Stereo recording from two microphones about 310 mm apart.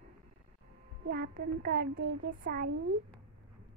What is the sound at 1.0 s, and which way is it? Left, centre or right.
A woman's voice, right.